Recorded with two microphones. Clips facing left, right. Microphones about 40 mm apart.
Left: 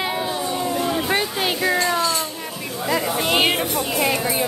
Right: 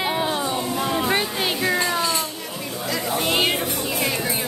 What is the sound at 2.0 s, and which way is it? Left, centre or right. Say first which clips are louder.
Speech: left 2 dB; centre.